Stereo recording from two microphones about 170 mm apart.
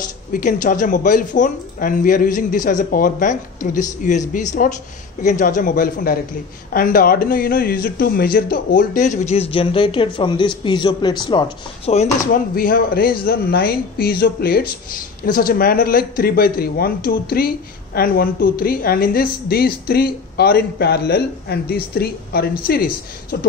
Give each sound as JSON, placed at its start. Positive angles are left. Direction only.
{"t": 0.3, "sound": "a man's voice", "side_deg": 50}
{"t": 12.5, "sound": "speech", "side_deg": 60}